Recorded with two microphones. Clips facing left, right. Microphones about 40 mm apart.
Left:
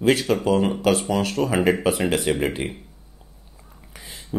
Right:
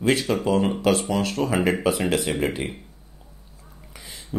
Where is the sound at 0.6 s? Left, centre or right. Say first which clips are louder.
Left 1 dB; centre.